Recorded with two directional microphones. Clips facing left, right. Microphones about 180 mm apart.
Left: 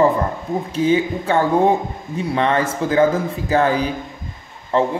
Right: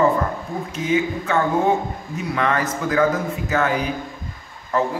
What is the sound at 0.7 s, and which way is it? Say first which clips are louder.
A man's voice: left 4 dB; 30° left (ahead or behind).